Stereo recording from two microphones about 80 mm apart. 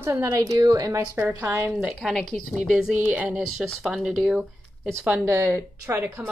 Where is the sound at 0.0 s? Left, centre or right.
Right.